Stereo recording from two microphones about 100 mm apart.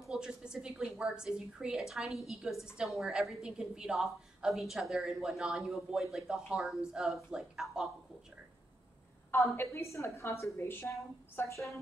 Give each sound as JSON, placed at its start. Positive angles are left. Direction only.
{"t": 0.0, "sound": "a woman's voice", "side_deg": -5}
{"t": 9.3, "sound": "a woman's voice", "side_deg": 25}